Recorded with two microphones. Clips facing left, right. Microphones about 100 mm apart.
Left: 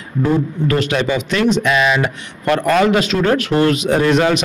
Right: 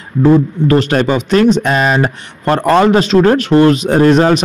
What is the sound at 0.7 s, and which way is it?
Speech, 35° right (ahead or behind).